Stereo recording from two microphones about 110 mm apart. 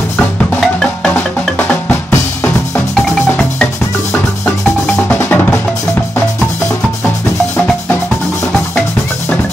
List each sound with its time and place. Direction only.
0.6 s percussion: 5° left (ahead or behind)
2.9 s music: 5° left (ahead or behind)
4.1 s music: 15° left (ahead or behind)
5.0 s percussion: 15° left (ahead or behind)